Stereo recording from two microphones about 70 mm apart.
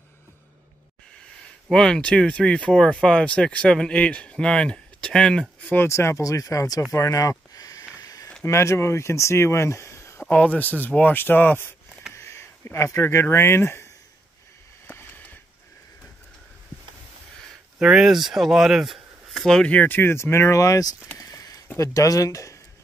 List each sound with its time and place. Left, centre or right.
1.7 s speech: centre
5.9 s speech: left
8.0 s a sound: left
8.5 s speech: left
10.2 s speech: left
12.1 s speech: left
15.0 s a sound: left
17.7 s speech: centre
19.7 s speech: centre
20.0 s speech: left
21.2 s a sound: left
21.7 s speech: left